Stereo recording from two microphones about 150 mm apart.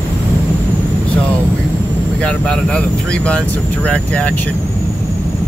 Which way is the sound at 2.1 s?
5° left (ahead or behind).